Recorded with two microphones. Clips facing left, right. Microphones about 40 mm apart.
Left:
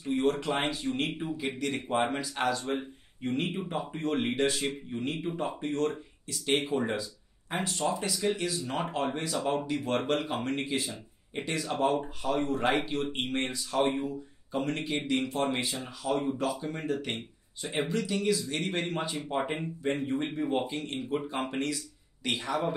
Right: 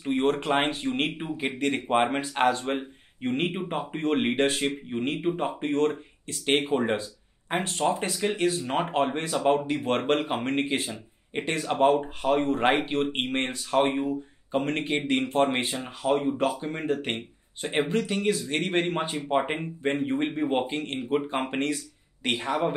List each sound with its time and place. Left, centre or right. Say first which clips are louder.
0.0 s speech: right 3 dB; right